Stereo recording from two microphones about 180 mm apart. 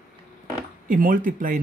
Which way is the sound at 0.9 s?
50° right (ahead or behind).